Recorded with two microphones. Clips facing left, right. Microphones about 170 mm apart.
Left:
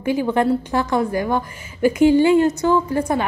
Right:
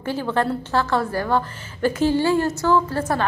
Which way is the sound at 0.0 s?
15° left (ahead or behind).